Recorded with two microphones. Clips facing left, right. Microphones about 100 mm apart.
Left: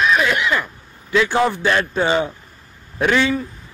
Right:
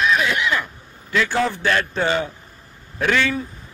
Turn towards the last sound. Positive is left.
turn(degrees=20)  # may be behind; listen again after turning